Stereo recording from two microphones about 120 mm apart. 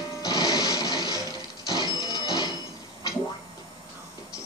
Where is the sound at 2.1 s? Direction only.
30° left (ahead or behind).